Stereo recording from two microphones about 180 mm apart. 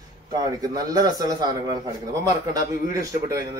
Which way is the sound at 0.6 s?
20° right (ahead or behind).